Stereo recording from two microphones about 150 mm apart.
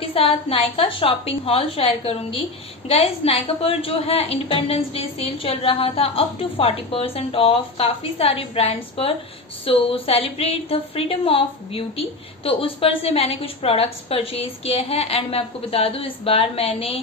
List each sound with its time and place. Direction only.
0.0 s a woman's voice: 40° left (ahead or behind)